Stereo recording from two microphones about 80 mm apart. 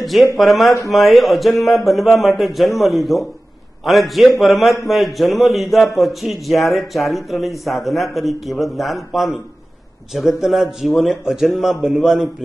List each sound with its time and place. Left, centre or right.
0.0 s speech: centre